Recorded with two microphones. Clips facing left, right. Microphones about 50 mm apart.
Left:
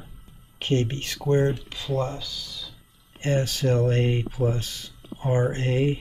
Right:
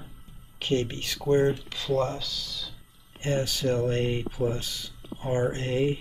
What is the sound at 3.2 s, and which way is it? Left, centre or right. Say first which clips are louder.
Speech: left 3 dB; left.